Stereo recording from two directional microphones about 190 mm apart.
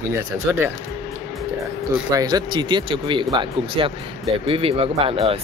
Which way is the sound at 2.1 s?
20° right (ahead or behind).